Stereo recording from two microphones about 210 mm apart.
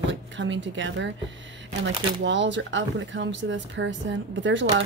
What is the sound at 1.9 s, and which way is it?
Speech, 25° right (ahead or behind).